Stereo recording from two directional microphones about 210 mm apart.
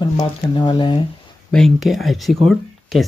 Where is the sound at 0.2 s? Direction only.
20° left (ahead or behind).